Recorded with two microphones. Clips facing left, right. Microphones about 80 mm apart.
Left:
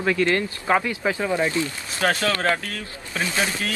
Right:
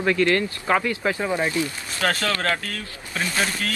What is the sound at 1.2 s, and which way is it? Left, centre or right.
Speech, centre.